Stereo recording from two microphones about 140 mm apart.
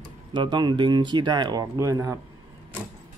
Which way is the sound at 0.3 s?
30° right (ahead or behind).